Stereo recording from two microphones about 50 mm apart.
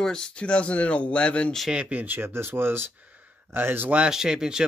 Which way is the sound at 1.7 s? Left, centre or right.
Right.